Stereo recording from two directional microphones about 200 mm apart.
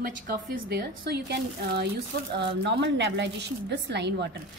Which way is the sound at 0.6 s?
55° right (ahead or behind).